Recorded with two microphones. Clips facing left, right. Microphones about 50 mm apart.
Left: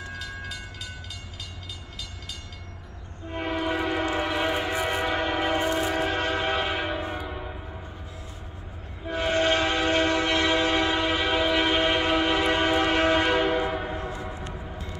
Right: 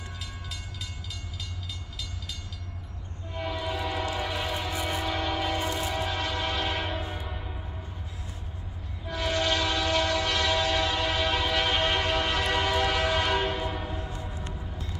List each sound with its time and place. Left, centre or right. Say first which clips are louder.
3.3 s train: left 5 dB; left
6.7 s church bell: left 3 dB; centre
9.0 s train: left 4 dB; left
13.2 s train horn: left 4 dB; centre